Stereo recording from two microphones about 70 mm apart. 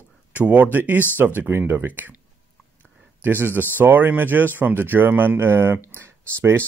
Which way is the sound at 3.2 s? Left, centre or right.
Right.